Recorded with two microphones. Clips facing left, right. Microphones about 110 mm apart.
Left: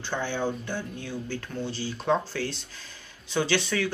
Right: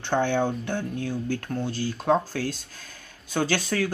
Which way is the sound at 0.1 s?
55° right (ahead or behind).